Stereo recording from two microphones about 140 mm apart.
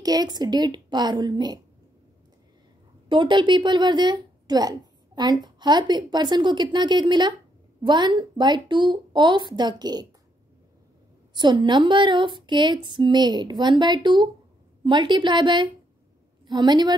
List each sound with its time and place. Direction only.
0.0 s a woman's voice: 30° right (ahead or behind)
3.1 s speech: 35° right (ahead or behind)
11.3 s speech: 35° right (ahead or behind)